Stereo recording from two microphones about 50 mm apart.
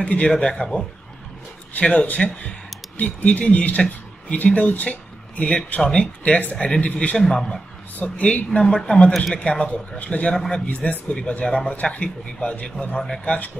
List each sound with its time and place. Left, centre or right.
0.0 s speech: left
1.7 s speech: left
7.2 s speech: centre
8.0 s speech: left
8.5 s speech: centre
9.9 s speech: left
10.3 s speech: centre
10.7 s speech: left
11.7 s speech: left
12.9 s speech: centre
13.2 s speech: left